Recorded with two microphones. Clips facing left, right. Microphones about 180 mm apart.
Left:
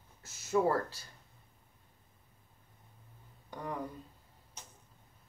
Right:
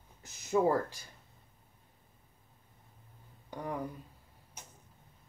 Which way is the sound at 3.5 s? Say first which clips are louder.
Right 2 dB; 10° right (ahead or behind).